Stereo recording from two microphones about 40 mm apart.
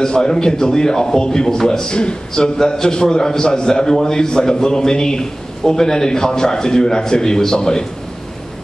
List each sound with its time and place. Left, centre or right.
0.0 s a man's voice: centre